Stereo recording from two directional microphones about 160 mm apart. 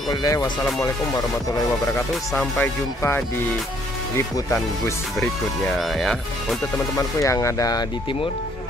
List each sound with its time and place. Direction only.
0.1 s speech: 25° left (ahead or behind)
2.3 s speech: 15° left (ahead or behind)
5.8 s speech: centre (ahead or behind)
7.2 s speech: 20° left (ahead or behind)